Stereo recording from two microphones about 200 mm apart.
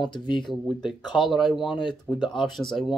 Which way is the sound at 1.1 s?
Centre (ahead or behind).